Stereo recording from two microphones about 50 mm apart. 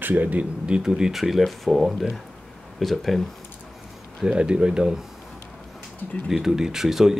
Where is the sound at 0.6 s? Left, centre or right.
Centre.